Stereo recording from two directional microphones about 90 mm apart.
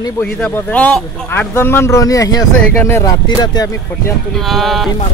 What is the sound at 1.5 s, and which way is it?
Speech, 25° left (ahead or behind).